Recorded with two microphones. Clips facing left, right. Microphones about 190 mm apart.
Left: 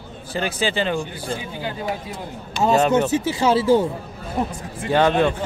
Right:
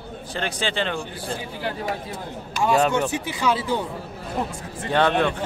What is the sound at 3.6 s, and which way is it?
Speech, 45° left (ahead or behind).